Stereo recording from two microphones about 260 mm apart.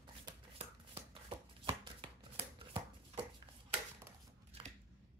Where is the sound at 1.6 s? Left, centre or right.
Centre.